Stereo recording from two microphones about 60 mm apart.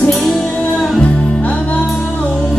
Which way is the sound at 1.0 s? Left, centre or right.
Left.